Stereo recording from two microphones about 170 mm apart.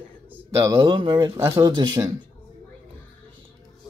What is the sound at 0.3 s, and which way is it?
Speech, 15° right (ahead or behind).